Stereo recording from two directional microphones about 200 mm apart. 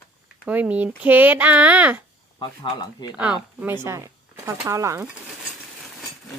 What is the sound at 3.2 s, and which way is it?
Speech, 10° right (ahead or behind).